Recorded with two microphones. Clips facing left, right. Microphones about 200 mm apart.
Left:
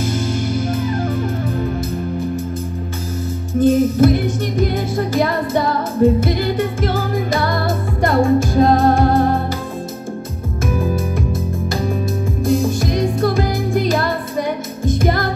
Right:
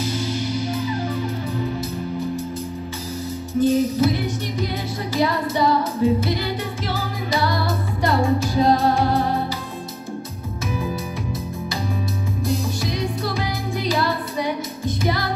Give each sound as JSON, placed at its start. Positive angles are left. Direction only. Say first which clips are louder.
{"t": 0.0, "sound": "music", "louder": "left 4 dB", "side_deg": 50}
{"t": 3.5, "sound": "music", "louder": "left 4 dB", "side_deg": 50}
{"t": 12.4, "sound": "music", "louder": "left 8 dB", "side_deg": 50}